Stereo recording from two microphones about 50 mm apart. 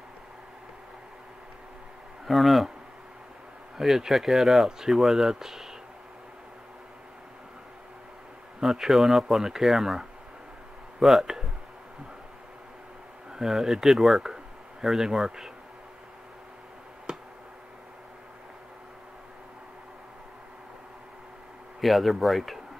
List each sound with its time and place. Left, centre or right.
2.2 s speech: centre
3.7 s speech: centre
8.6 s speech: centre
13.3 s speech: centre
17.1 s a sound: centre
21.8 s speech: centre